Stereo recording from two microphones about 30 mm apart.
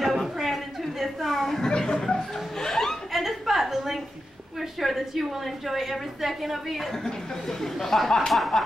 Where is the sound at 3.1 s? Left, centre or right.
Centre.